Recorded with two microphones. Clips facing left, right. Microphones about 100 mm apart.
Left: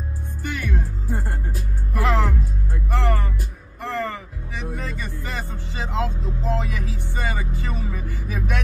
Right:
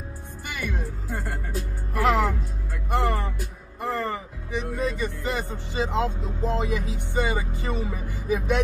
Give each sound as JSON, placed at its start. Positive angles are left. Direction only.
{"t": 0.4, "sound": "music", "side_deg": -15}
{"t": 2.0, "sound": "music", "side_deg": -15}
{"t": 4.7, "sound": "speech", "side_deg": -15}